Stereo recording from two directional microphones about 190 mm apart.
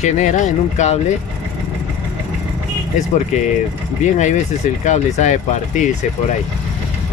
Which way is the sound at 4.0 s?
40° left (ahead or behind).